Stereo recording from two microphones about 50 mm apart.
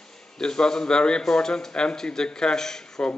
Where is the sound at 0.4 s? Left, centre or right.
Centre.